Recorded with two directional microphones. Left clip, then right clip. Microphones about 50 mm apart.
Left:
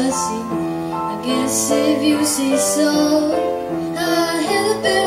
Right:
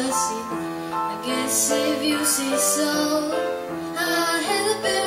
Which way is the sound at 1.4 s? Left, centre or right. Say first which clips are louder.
Left 5 dB; right.